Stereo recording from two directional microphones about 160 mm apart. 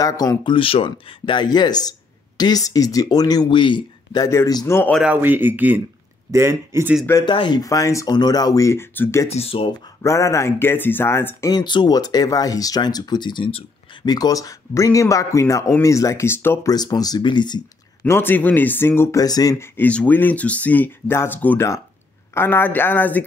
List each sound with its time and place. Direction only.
0.0 s speech: 25° left (ahead or behind)
4.9 s speech: 10° right (ahead or behind)
7.2 s speech: 30° left (ahead or behind)
9.3 s speech: 35° left (ahead or behind)
10.0 s speech: 20° left (ahead or behind)
11.5 s speech: 25° left (ahead or behind)
18.0 s speech: 15° left (ahead or behind)
19.5 s speech: 10° left (ahead or behind)